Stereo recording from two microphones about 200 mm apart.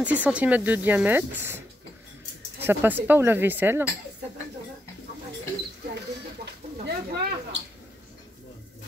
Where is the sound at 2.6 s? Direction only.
10° right (ahead or behind).